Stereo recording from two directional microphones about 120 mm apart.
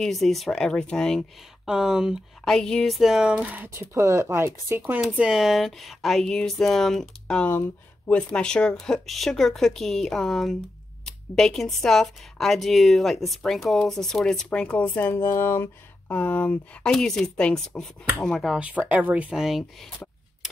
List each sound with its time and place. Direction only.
0.0 s speech: centre (ahead or behind)
1.7 s speech: 5° right (ahead or behind)
2.4 s speech: 5° left (ahead or behind); by 5.0 s 15° right (ahead or behind)
5.0 s speech: 5° right (ahead or behind)
18.6 s speech: 10° right (ahead or behind)